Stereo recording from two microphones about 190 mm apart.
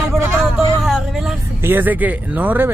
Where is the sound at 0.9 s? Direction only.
Centre (ahead or behind).